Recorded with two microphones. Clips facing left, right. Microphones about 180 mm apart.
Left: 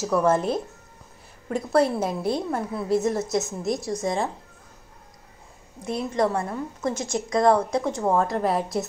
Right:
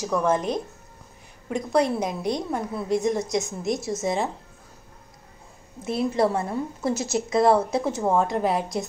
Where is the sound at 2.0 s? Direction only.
15° right (ahead or behind).